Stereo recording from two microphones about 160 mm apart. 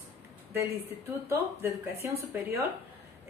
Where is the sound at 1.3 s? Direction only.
15° right (ahead or behind).